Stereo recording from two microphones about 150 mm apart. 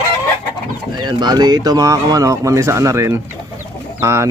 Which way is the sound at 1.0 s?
30° right (ahead or behind).